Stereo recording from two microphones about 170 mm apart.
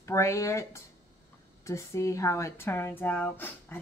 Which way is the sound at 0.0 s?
15° left (ahead or behind).